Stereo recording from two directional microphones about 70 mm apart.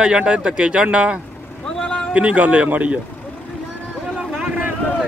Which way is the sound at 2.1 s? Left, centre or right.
Centre.